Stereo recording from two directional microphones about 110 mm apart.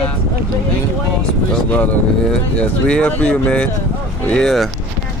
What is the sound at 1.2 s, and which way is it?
Speech, 15° left (ahead or behind).